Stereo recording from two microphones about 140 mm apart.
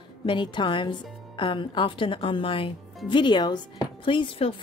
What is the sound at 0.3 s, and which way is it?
Speech, 35° left (ahead or behind).